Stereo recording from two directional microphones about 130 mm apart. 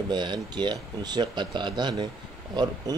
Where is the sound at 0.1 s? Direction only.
35° right (ahead or behind).